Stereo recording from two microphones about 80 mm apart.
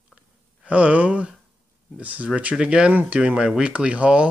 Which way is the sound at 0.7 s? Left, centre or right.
Centre.